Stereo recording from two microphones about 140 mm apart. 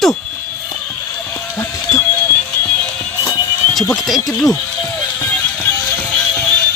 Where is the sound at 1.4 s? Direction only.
20° left (ahead or behind).